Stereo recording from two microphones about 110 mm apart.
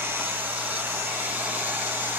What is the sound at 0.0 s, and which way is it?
Hair dryer, 20° right (ahead or behind).